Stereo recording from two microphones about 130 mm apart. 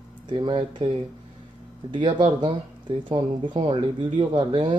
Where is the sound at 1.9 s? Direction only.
40° right (ahead or behind).